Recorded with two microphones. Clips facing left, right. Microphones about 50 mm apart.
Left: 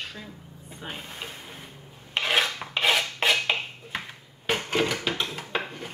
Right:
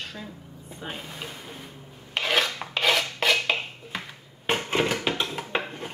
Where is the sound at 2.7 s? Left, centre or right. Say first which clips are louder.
Even; centre.